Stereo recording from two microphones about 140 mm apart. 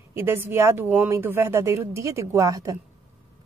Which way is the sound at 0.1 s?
15° right (ahead or behind).